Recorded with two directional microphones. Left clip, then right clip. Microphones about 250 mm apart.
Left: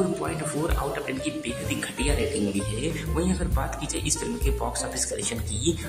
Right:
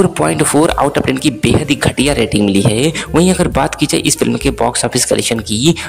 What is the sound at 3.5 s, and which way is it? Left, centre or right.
Speech, right.